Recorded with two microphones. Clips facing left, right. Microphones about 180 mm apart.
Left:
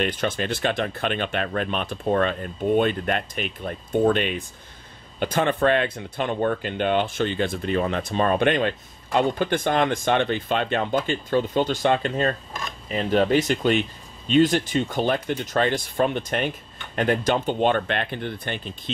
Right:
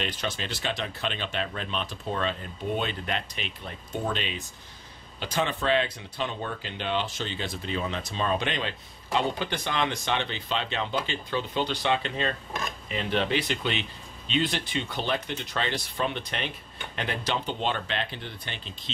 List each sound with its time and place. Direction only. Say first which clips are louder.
0.0 s speech: left 8 dB; 55° left (ahead or behind)